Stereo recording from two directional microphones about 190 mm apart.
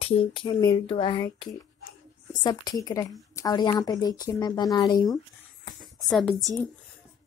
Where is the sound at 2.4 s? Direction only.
20° left (ahead or behind).